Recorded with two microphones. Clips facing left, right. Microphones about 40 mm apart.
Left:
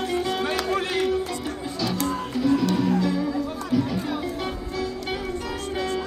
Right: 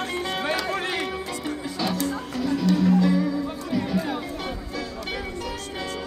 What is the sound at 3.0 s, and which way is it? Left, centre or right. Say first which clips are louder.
Music: right 2 dB; centre.